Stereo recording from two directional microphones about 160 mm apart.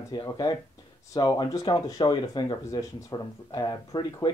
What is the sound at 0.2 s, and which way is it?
Speech, 20° left (ahead or behind).